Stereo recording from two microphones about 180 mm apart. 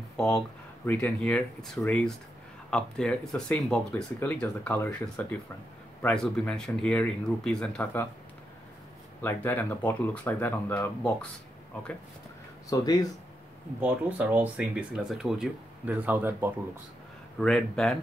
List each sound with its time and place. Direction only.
0.8 s speech: 10° left (ahead or behind)
9.2 s speech: 10° left (ahead or behind)
12.6 s speech: 20° left (ahead or behind)
13.7 s speech: 10° right (ahead or behind)
17.4 s speech: 5° left (ahead or behind)